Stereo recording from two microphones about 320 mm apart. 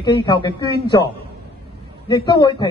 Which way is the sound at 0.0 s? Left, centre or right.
Centre.